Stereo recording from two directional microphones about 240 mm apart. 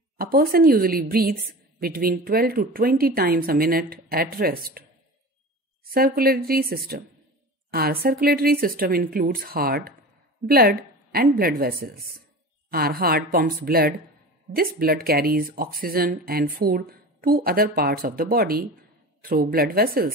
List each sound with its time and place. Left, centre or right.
0.2 s speech: right
5.9 s speech: right